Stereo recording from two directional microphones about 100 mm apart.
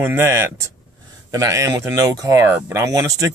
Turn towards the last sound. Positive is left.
turn(degrees=-35)  # may be behind; listen again after turning